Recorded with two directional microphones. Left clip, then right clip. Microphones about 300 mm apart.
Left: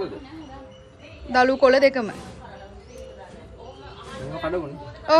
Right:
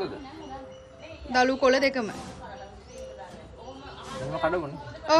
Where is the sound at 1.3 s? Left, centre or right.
Centre.